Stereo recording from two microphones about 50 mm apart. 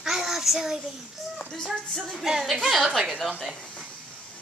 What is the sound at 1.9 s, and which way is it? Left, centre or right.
A woman's voice, centre.